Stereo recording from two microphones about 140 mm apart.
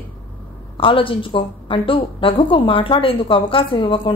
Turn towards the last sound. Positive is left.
turn(degrees=35)  # may be behind; listen again after turning